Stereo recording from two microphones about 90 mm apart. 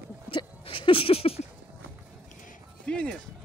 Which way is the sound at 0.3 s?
80° left.